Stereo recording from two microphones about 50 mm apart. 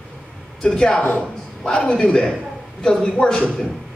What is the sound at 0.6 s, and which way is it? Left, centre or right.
A man's voice, centre.